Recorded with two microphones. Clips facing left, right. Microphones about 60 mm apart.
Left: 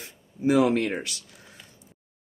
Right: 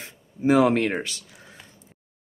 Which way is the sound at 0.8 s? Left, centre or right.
Right.